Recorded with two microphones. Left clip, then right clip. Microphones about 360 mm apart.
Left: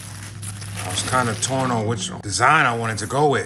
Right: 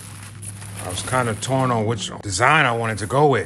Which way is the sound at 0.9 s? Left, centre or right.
Right.